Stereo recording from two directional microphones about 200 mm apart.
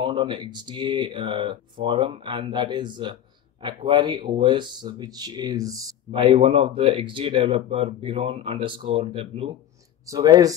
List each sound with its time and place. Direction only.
0.0 s speech: 25° right (ahead or behind)
10.0 s speech: 15° right (ahead or behind)